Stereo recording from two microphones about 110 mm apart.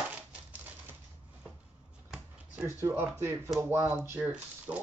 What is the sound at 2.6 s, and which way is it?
Speech, 25° right (ahead or behind).